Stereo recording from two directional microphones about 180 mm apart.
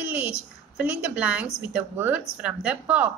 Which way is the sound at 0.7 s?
5° right (ahead or behind).